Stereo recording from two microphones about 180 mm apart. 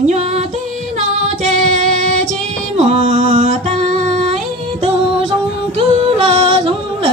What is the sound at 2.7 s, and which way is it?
Music, 35° right (ahead or behind).